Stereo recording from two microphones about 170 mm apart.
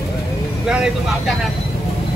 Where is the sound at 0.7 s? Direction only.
5° right (ahead or behind).